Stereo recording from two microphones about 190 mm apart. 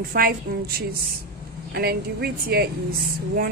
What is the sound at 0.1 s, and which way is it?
Speech, 50° right (ahead or behind).